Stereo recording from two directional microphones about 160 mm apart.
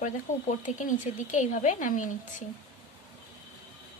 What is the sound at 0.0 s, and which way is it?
Speech, 50° left (ahead or behind).